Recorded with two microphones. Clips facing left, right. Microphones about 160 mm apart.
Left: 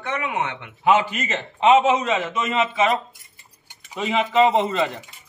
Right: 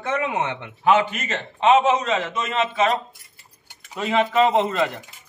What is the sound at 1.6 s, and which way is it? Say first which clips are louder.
A man's voice: left 1 dB; 10° left (ahead or behind).